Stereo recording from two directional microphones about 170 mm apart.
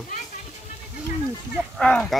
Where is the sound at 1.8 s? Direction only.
5° left (ahead or behind).